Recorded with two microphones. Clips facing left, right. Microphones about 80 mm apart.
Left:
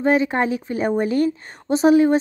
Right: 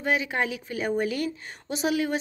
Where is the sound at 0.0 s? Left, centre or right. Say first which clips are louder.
Left 8 dB; left.